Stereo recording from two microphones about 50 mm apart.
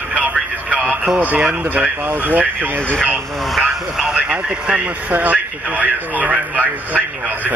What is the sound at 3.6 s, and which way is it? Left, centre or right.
Radio, centre.